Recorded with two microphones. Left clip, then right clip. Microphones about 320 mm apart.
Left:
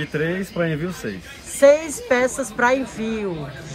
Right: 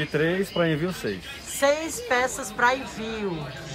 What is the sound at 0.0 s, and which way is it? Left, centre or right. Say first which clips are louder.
Speech: even; right.